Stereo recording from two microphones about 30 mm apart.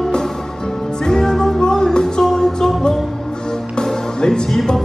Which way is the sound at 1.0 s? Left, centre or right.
Centre.